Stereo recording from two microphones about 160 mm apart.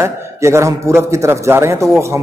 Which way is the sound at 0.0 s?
15° right (ahead or behind).